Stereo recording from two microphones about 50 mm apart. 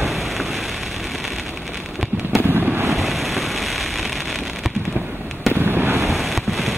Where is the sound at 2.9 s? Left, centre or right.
Centre.